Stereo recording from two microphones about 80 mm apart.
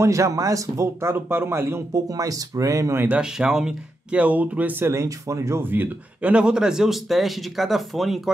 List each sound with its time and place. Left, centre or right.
0.0 s speech: right
2.0 s speech: right
3.2 s speech: centre; by 4.9 s right
4.9 s speech: right
5.6 s a man's voice: right; by 8.2 s centre